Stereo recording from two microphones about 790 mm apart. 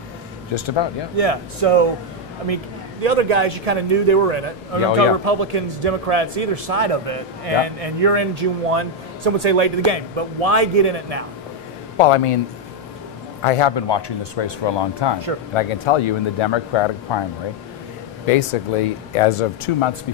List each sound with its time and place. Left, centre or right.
0.5 s speech: left
1.1 s a man's voice: right
12.0 s speech: left
13.4 s speech: left
18.8 s speech: left